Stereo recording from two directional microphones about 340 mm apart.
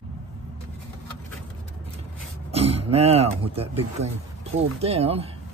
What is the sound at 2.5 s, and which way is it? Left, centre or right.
Speech, centre.